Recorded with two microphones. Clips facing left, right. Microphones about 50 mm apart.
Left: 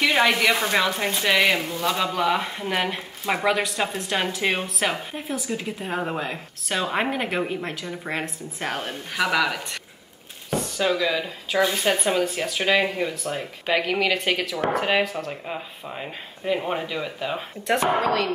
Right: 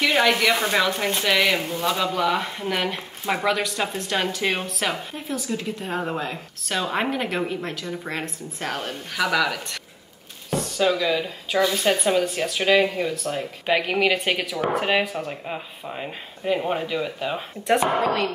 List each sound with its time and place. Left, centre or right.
0.0 s a woman's voice: centre
10.8 s a woman's voice: centre
13.7 s speech: centre
16.0 s speech: centre